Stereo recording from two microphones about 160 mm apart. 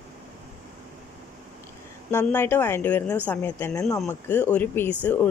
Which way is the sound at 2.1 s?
15° left (ahead or behind).